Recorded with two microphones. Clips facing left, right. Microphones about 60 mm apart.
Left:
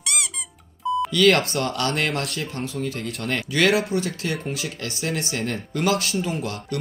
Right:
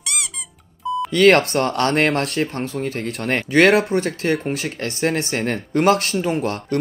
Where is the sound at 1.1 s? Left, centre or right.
Right.